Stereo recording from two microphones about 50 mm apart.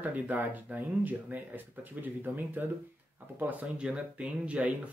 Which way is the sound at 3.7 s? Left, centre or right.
Right.